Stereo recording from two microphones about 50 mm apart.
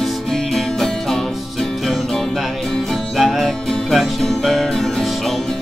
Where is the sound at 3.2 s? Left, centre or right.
Centre.